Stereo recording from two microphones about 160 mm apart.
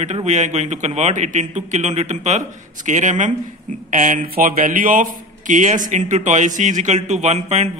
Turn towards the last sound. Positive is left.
turn(degrees=-45)  # may be behind; listen again after turning